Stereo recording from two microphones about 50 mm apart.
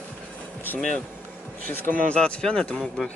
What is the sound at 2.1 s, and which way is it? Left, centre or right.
Speech, left.